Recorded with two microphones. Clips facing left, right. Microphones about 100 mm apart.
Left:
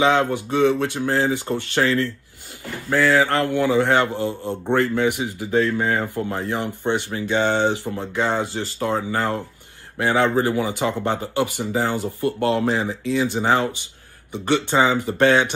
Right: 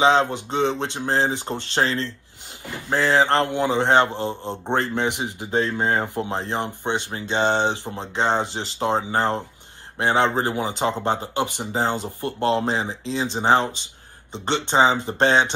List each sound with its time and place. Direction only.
0.0 s speech: 20° right (ahead or behind)